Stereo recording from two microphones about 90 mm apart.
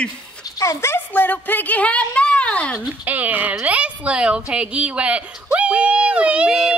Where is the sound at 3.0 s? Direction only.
20° right (ahead or behind).